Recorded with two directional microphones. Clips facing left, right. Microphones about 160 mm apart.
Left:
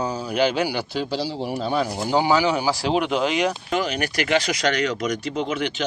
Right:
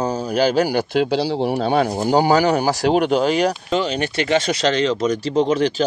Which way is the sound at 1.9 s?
45° right (ahead or behind).